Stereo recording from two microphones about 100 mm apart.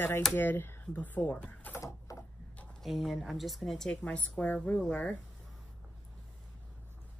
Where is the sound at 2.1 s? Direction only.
35° left (ahead or behind).